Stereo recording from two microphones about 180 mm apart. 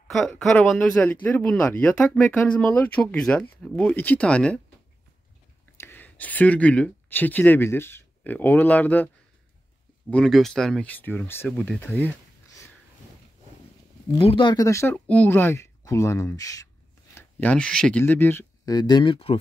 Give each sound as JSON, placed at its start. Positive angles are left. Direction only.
{"t": 0.1, "sound": "speech", "side_deg": 0}
{"t": 5.8, "sound": "speech", "side_deg": 10}
{"t": 10.1, "sound": "speech", "side_deg": 0}
{"t": 14.2, "sound": "speech", "side_deg": 25}
{"t": 18.7, "sound": "speech", "side_deg": 25}